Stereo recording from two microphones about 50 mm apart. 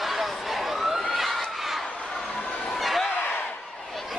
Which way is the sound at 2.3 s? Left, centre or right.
Left.